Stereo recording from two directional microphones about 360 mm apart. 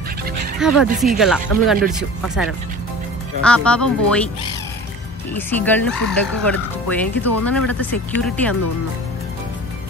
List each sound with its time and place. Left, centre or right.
0.6 s speech: centre
3.4 s speech: centre
5.3 s speech: centre